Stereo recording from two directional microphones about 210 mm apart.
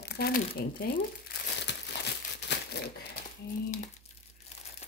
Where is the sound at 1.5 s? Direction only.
55° left (ahead or behind).